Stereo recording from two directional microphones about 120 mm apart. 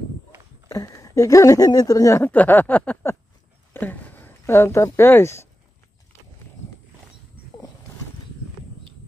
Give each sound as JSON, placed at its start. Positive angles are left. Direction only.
{"t": 0.7, "sound": "speech", "side_deg": 30}
{"t": 2.2, "sound": "a sound", "side_deg": 15}
{"t": 3.7, "sound": "speech", "side_deg": 15}